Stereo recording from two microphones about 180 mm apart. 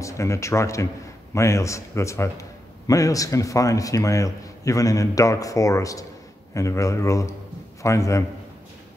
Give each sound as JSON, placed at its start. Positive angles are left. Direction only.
{"t": 0.0, "sound": "a man's voice", "side_deg": 15}